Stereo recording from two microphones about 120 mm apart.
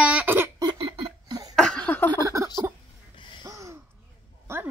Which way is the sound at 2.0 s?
25° right (ahead or behind).